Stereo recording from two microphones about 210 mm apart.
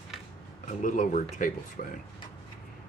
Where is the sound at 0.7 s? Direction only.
35° left (ahead or behind).